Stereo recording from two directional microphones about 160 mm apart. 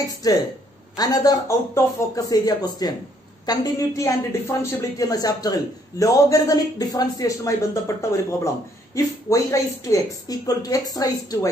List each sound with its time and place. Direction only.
0.2 s a woman's voice: 25° left (ahead or behind)